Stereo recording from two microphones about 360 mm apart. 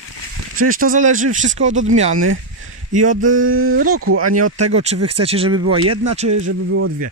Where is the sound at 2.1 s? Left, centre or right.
Right.